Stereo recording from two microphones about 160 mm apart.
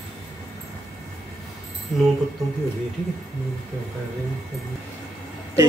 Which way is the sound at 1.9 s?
Centre (ahead or behind).